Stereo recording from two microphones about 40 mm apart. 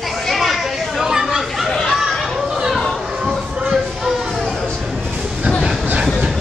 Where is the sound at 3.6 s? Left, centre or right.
Centre.